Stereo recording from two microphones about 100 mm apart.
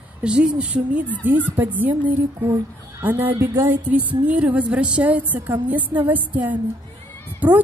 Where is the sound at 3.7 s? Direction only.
15° right (ahead or behind).